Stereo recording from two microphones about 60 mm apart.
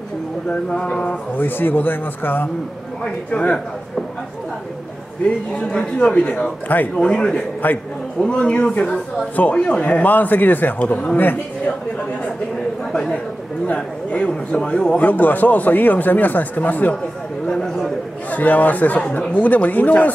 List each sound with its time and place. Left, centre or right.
0.5 s speech: centre
1.4 s speech: left
3.0 s a man's voice: left
5.5 s speech: centre
7.6 s a man's voice: left
8.3 s a man's voice: centre
12.9 s a man's voice: centre
17.5 s speech: centre
18.3 s a man's voice: left
18.9 s a man's voice: centre